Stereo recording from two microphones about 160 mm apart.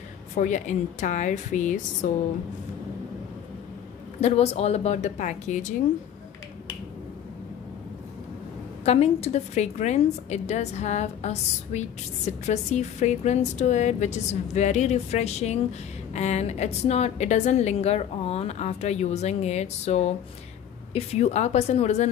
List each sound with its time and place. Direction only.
0.4 s a woman's voice: 50° left (ahead or behind)
4.2 s a woman's voice: 40° left (ahead or behind)
8.8 s a woman's voice: 40° left (ahead or behind)